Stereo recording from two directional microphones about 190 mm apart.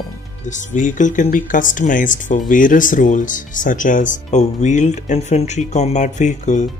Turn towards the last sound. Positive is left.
turn(degrees=40)  # may be behind; listen again after turning